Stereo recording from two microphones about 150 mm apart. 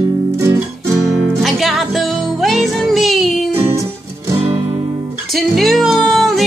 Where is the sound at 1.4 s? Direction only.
Centre (ahead or behind).